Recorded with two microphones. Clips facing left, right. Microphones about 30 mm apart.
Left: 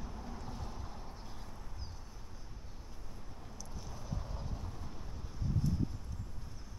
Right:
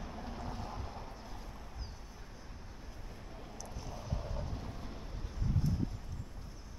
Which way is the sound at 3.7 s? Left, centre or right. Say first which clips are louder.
Right 2 dB; centre.